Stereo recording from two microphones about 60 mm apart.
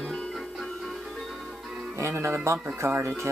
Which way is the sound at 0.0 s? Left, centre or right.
Centre.